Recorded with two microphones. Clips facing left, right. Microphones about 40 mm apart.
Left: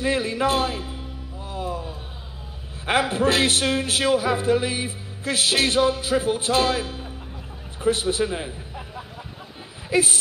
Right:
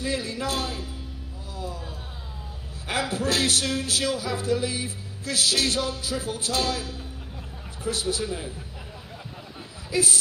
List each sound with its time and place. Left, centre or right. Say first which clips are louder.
0.0 s a man's voice: left 6 dB; left
1.5 s music: left 6 dB; left
2.9 s speech: left 6 dB; left
9.8 s a man's voice: left 4 dB; left